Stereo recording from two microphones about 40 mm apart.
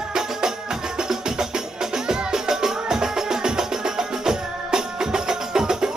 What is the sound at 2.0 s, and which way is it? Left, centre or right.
Music, centre.